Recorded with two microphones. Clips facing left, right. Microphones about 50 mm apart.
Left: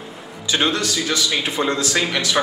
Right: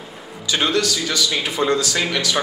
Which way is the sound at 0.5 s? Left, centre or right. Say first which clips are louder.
Right 1 dB; left.